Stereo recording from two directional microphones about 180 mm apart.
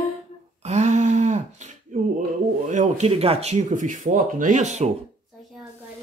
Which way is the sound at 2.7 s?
40° right (ahead or behind).